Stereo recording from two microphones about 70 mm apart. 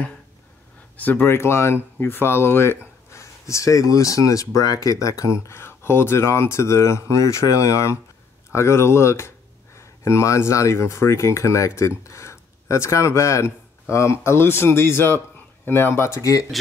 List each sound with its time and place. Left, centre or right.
0.9 s speech: left